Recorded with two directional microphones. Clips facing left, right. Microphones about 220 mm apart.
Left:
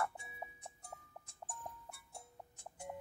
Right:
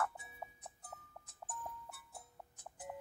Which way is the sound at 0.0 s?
Centre (ahead or behind).